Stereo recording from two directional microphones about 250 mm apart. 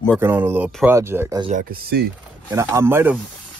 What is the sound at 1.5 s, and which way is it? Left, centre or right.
Speech, right.